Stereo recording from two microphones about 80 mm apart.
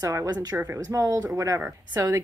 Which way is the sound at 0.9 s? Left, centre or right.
Right.